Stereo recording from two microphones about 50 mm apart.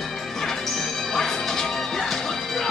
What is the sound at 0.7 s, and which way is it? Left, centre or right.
Music, centre.